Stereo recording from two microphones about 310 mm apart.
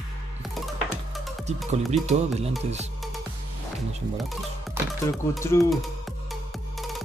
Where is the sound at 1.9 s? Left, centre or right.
Right.